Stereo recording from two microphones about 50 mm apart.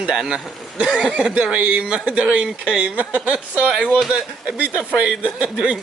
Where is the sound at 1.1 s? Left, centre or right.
Right.